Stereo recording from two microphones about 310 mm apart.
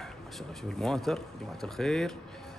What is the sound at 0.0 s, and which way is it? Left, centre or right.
A man's voice, centre.